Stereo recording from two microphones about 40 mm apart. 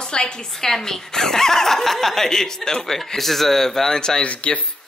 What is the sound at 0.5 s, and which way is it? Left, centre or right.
Speech, centre.